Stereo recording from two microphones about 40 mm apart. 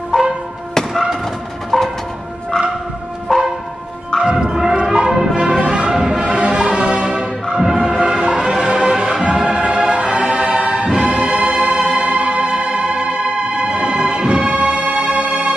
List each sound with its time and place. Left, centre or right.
0.1 s music: left
3.3 s church bell: centre
4.2 s music: right
7.5 s music: centre; by 15.5 s right